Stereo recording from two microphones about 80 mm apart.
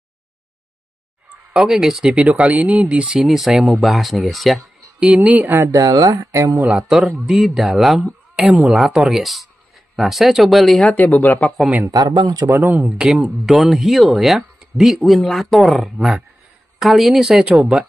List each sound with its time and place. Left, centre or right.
1.5 s speech: centre
2.1 s speech: centre
3.2 s speech: centre
5.0 s speech: centre
5.7 s speech: right
6.9 s speech: centre
10.8 s speech: centre
11.9 s speech: right
12.4 s speech: right
13.0 s speech: centre